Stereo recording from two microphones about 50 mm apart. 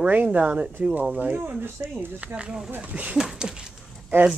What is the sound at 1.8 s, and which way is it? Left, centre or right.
Speech, right.